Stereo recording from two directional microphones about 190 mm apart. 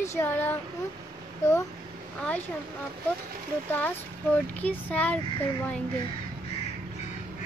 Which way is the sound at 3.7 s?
10° left (ahead or behind).